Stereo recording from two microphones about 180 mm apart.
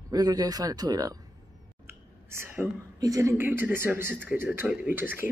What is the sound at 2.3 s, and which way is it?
Speech, 10° right (ahead or behind).